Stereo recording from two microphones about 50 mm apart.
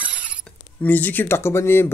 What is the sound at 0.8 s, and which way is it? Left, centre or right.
Speech, left.